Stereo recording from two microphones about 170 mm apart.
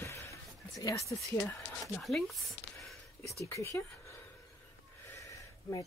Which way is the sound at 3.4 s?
15° left (ahead or behind).